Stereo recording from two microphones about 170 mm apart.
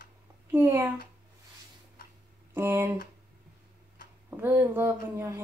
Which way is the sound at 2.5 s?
10° right (ahead or behind).